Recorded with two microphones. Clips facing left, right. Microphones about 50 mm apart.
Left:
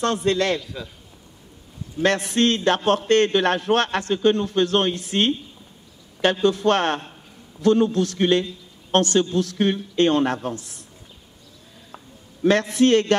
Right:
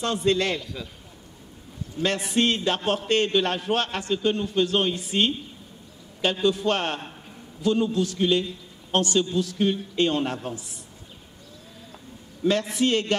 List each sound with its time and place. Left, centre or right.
0.0 s a man's voice: left
2.0 s a man's voice: left
6.4 s a man's voice: left
12.4 s a man's voice: left